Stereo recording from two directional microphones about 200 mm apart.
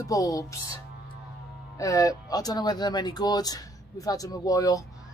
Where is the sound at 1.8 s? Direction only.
15° left (ahead or behind).